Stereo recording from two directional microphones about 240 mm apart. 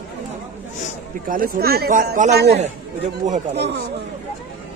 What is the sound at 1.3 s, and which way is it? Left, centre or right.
Speech, right.